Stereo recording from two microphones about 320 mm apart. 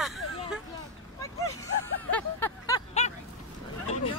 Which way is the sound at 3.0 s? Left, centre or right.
Left.